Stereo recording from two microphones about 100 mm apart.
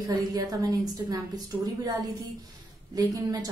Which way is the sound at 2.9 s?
40° right (ahead or behind).